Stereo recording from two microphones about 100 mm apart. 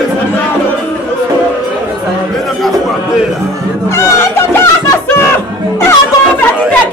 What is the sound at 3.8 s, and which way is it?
Music, 25° left (ahead or behind).